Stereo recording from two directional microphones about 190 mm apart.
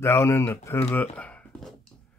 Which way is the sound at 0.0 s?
15° left (ahead or behind).